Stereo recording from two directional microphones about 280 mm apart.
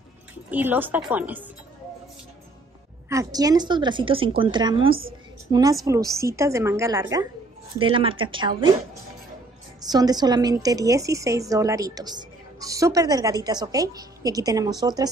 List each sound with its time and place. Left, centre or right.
0.5 s a woman's voice: centre
3.1 s a woman's voice: centre
9.8 s a woman's voice: centre